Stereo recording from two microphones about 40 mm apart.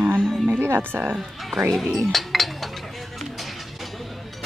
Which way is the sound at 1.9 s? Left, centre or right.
Centre.